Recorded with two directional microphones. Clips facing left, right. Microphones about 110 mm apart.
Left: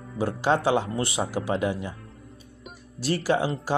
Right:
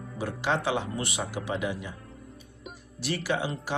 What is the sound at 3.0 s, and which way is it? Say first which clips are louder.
Speech: left 5 dB; 35° left (ahead or behind).